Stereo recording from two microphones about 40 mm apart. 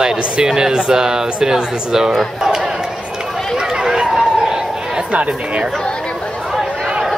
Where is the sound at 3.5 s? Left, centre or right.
Centre.